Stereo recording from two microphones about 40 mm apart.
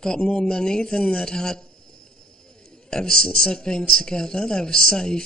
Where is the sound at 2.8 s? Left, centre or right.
Centre.